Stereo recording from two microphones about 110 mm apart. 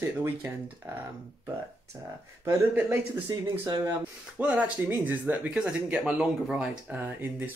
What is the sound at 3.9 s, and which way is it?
Speech, 15° right (ahead or behind).